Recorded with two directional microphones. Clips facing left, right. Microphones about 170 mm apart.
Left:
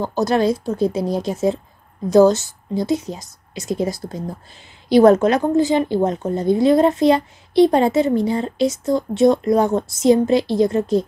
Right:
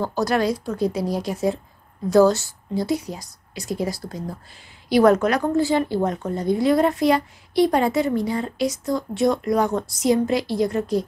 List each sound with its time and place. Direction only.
0.0 s a woman's voice: 25° left (ahead or behind)